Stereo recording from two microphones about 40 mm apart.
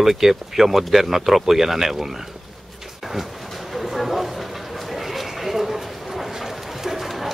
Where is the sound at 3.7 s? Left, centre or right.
Centre.